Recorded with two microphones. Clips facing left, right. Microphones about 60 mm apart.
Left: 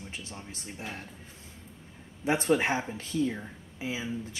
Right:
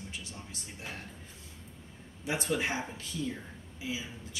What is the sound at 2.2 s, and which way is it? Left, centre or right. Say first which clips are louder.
Speech: left 6 dB; left.